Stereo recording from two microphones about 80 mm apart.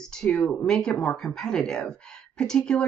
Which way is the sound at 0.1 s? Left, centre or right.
Centre.